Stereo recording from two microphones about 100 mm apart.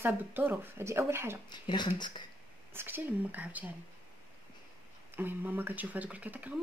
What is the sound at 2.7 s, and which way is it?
A woman's voice, 20° right (ahead or behind).